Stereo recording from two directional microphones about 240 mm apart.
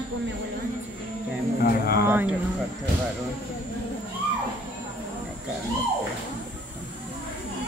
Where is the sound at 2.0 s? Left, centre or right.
Centre.